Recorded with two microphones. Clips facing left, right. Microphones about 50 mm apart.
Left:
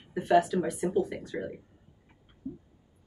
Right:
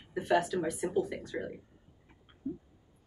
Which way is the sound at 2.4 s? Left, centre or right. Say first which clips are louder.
Right 2 dB; right.